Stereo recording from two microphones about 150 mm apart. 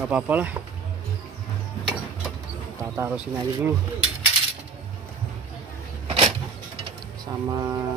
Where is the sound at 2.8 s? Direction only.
15° right (ahead or behind).